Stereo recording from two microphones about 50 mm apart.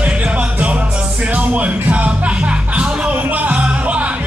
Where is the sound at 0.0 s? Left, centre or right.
Right.